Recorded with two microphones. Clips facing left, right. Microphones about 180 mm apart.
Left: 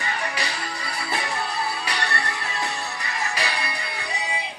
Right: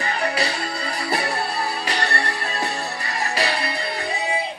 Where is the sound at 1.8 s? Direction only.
40° right (ahead or behind).